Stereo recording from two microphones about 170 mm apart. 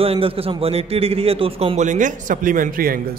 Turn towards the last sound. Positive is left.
turn(degrees=-60)  # may be behind; listen again after turning